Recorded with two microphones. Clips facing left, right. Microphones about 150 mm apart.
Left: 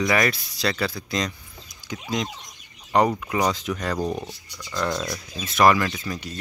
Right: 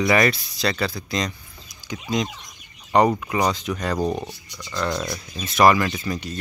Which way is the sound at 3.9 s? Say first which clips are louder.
Right 3 dB; 20° right (ahead or behind).